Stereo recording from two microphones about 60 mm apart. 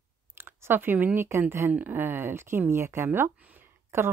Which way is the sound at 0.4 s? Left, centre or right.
Right.